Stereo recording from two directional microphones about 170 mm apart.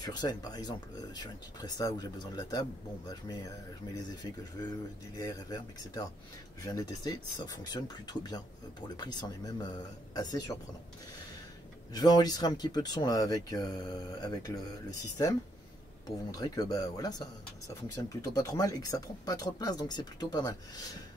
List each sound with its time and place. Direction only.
0.0 s speech: 25° left (ahead or behind)
11.9 s speech: 20° left (ahead or behind)